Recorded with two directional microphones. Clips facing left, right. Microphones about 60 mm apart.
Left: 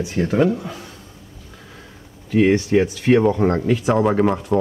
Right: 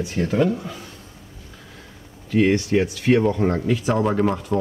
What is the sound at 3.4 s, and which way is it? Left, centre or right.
Speech, left.